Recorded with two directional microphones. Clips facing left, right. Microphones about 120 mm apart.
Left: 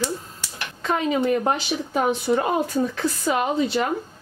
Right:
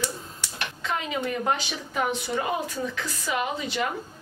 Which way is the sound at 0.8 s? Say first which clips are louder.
Left 8 dB; 40° left (ahead or behind).